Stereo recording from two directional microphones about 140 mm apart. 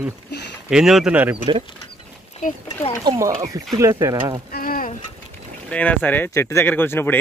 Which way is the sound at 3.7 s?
20° right (ahead or behind).